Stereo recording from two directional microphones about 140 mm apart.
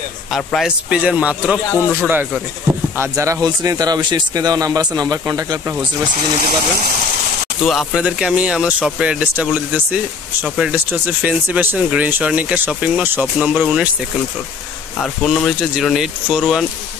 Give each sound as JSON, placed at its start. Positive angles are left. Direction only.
{"t": 0.3, "sound": "speech", "side_deg": 0}
{"t": 1.7, "sound": "speech", "side_deg": 15}
{"t": 2.0, "sound": "speech", "side_deg": -15}
{"t": 7.6, "sound": "speech", "side_deg": -5}
{"t": 15.0, "sound": "speech", "side_deg": 0}